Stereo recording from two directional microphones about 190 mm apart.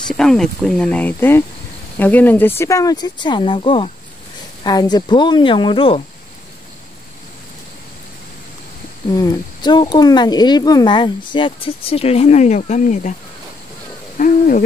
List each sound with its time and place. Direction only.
0.1 s speech: 5° left (ahead or behind); by 6.0 s 30° left (ahead or behind)
9.1 s speech: 20° left (ahead or behind); by 13.1 s 40° left (ahead or behind)
14.1 s hoot: 45° left (ahead or behind)